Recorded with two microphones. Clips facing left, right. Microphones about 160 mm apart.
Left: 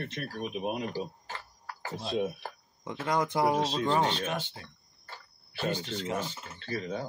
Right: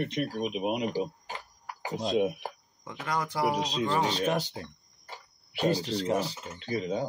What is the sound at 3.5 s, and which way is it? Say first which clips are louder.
Speech: left 2 dB; 15° right (ahead or behind).